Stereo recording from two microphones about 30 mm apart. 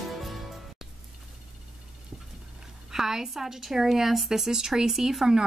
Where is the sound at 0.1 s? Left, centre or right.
Centre.